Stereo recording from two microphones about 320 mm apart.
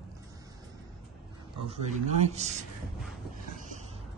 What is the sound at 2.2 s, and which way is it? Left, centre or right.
Speech, right.